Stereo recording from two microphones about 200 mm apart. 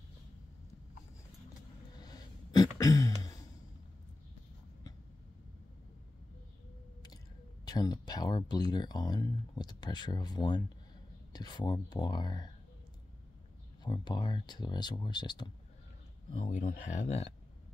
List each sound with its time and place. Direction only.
2.0 s throat clearing: 20° left (ahead or behind)
7.6 s speech: 20° left (ahead or behind)
13.8 s speech: 20° left (ahead or behind)
16.3 s speech: 35° left (ahead or behind)